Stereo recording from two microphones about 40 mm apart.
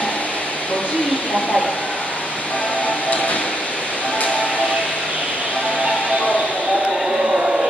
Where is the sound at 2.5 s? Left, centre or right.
Left.